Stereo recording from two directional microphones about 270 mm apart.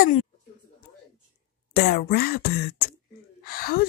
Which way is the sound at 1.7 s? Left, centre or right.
Left.